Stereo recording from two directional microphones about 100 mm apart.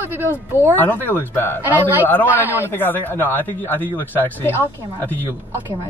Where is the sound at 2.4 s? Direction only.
20° right (ahead or behind).